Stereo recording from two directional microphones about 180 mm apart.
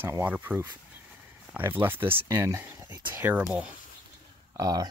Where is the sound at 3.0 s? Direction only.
25° right (ahead or behind).